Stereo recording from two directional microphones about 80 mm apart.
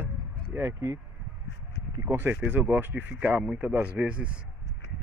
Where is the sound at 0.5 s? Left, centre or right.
Right.